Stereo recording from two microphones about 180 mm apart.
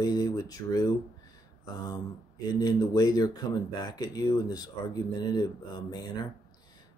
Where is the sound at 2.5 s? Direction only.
20° left (ahead or behind).